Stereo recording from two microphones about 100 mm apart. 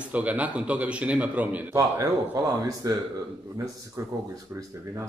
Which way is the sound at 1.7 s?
30° right (ahead or behind).